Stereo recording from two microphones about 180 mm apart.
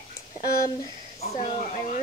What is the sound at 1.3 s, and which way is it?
Speech, 45° left (ahead or behind).